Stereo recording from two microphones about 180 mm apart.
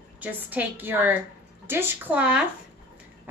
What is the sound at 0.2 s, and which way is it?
A woman's voice, 10° right (ahead or behind).